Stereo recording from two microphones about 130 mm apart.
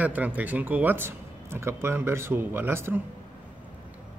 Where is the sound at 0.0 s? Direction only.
10° right (ahead or behind).